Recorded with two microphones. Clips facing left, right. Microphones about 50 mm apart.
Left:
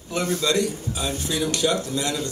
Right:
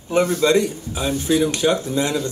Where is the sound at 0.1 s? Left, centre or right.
Right.